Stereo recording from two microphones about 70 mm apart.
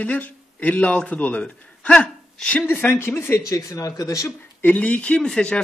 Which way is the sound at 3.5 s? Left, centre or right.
Left.